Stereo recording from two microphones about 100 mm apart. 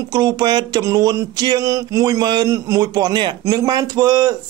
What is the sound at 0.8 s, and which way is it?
Speech, 35° right (ahead or behind).